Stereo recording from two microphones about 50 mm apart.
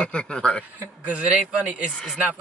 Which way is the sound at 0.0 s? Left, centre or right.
Left.